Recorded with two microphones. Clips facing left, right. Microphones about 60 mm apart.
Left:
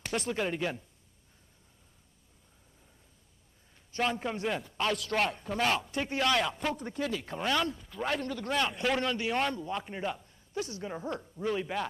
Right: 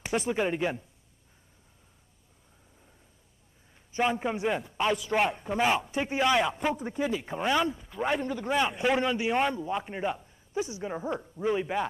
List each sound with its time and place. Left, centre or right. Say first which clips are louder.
0.0 s a man's voice: right 4 dB; centre
3.9 s a man's voice: right 4 dB; centre